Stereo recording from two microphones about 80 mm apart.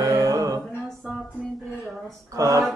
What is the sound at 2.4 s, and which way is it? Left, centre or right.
Speech, right.